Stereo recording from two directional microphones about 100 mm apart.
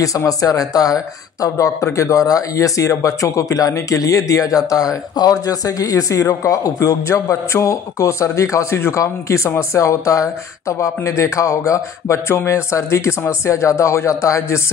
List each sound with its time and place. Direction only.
0.0 s speech: 35° left (ahead or behind)